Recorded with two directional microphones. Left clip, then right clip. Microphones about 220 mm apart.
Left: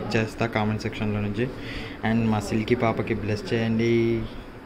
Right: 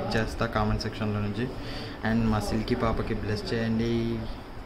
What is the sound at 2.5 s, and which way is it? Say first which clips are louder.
Speech: left 4 dB; 30° right (ahead or behind).